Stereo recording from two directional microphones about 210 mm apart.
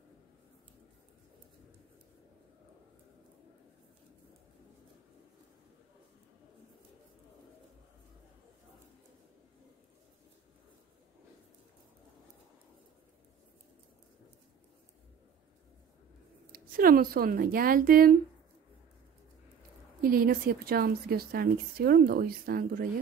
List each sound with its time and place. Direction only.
16.5 s a woman's voice: 45° right (ahead or behind)
20.0 s a woman's voice: 45° right (ahead or behind)